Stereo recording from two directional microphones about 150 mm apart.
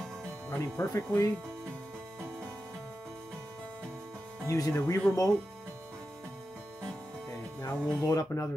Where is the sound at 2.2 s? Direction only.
15° right (ahead or behind).